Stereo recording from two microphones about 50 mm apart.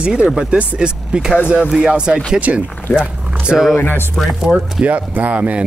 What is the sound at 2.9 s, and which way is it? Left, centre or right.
Speech, left.